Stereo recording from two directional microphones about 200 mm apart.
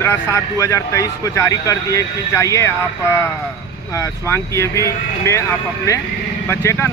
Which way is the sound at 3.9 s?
15° left (ahead or behind).